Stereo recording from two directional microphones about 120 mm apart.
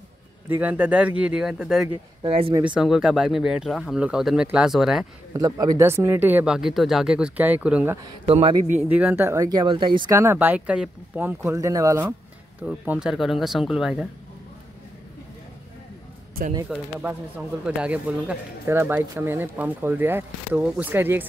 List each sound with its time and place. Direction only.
0.5 s speech: 15° right (ahead or behind)
2.2 s a man's voice: 55° right (ahead or behind)
2.6 s speech: 5° right (ahead or behind)
5.3 s speech: 30° right (ahead or behind); by 7.9 s 10° right (ahead or behind)
8.3 s a man's voice: 50° right (ahead or behind)
8.8 s speech: 15° right (ahead or behind)
9.6 s speech: 45° right (ahead or behind)
10.1 s speech: 20° right (ahead or behind)
12.6 s speech: 10° right (ahead or behind)
16.7 s speech: 5° right (ahead or behind)